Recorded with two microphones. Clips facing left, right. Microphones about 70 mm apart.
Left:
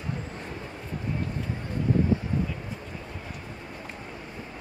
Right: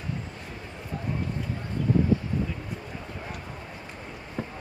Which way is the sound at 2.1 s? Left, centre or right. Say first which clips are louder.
Right 1 dB; left.